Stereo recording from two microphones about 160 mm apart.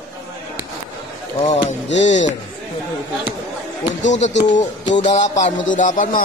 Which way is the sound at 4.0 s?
50° left (ahead or behind).